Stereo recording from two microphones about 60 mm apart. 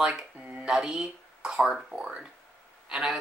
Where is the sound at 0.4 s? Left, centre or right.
Right.